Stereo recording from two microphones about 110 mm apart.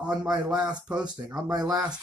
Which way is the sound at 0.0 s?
10° right (ahead or behind).